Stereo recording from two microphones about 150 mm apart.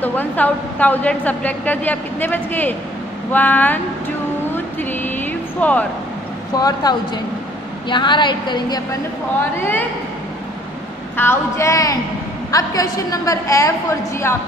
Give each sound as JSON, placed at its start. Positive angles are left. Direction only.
{"t": 0.0, "sound": "a woman's voice", "side_deg": 10}
{"t": 5.0, "sound": "vehicle", "side_deg": 10}
{"t": 6.5, "sound": "a woman's voice", "side_deg": 25}
{"t": 9.6, "sound": "a woman's voice", "side_deg": 15}
{"t": 11.1, "sound": "a woman's voice", "side_deg": 15}